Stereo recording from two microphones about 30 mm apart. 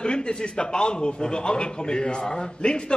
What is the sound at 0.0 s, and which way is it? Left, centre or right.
A man's voice, left.